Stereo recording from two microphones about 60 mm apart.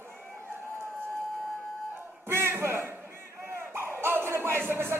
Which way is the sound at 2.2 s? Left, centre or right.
Right.